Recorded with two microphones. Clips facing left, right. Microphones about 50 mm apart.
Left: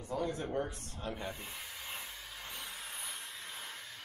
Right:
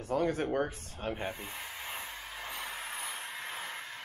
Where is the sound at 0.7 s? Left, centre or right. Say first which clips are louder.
Right 4 dB; right.